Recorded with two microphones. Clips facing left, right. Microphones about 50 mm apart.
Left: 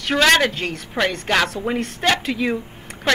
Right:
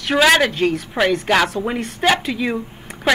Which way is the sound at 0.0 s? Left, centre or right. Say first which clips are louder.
Right 2 dB; centre.